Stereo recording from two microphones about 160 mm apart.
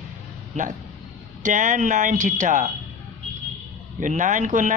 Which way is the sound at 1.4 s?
55° right (ahead or behind).